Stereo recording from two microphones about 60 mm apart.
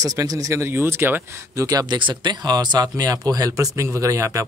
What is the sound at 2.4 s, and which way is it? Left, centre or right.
Speech, right.